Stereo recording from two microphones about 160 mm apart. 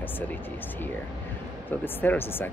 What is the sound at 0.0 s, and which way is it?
Speech, 10° left (ahead or behind).